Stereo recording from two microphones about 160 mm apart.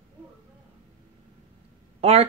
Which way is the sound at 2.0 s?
40° right (ahead or behind).